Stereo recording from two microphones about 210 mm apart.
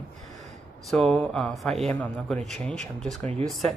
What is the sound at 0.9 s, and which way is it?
Speech, 5° left (ahead or behind).